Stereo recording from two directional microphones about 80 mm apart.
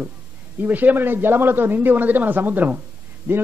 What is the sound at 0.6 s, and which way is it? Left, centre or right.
A man's voice, right.